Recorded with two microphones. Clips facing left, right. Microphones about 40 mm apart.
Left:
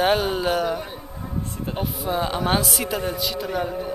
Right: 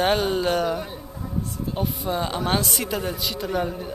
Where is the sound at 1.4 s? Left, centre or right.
Left.